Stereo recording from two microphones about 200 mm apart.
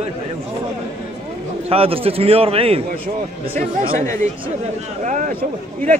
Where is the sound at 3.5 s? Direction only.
45° right (ahead or behind).